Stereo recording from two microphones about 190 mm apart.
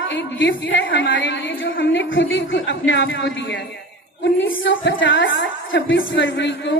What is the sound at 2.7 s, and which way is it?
A woman's voice, 75° left (ahead or behind).